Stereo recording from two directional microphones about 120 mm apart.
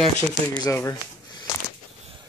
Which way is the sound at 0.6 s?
30° left (ahead or behind).